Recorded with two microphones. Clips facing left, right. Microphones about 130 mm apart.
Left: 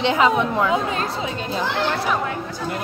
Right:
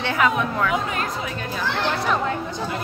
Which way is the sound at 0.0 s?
20° left (ahead or behind).